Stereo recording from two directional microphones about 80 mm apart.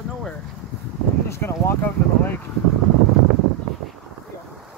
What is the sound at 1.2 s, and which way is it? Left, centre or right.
Speech, left.